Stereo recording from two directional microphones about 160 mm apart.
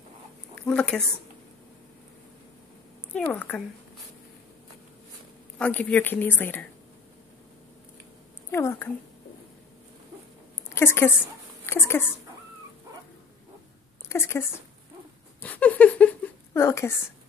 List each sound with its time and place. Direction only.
0.6 s speech: 5° left (ahead or behind)
3.1 s a woman's voice: 10° left (ahead or behind)
5.6 s a woman's voice: 10° left (ahead or behind)
8.5 s a woman's voice: 15° left (ahead or behind)
10.7 s a woman's voice: 15° left (ahead or behind)
14.0 s a woman's voice: 15° left (ahead or behind)
15.4 s a sound: 10° left (ahead or behind)